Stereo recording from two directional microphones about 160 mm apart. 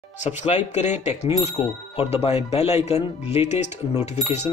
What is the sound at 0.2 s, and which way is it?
Speech, 50° left (ahead or behind).